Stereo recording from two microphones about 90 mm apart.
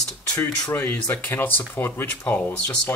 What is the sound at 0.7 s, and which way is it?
Speech, 20° left (ahead or behind).